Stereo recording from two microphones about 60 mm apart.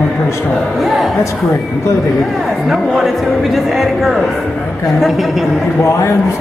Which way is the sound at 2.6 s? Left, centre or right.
Centre.